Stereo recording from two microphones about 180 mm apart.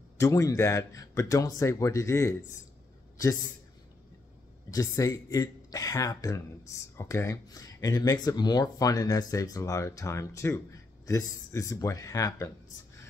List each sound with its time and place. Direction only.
0.2 s a man's voice: 15° left (ahead or behind)
4.6 s speech: 20° left (ahead or behind)